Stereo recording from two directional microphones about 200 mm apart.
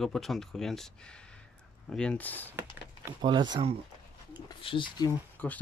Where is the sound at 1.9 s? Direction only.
5° left (ahead or behind).